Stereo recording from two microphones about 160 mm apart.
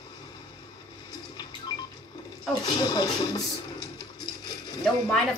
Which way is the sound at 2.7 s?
25° left (ahead or behind).